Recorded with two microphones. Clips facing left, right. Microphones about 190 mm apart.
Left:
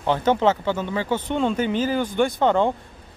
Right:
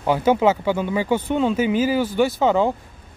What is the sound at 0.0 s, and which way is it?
Speech, 10° right (ahead or behind).